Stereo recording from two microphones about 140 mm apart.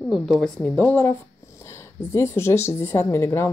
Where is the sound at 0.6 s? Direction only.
10° left (ahead or behind).